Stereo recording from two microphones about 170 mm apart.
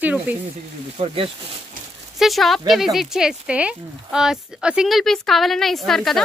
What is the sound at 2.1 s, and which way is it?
Speech, centre (ahead or behind).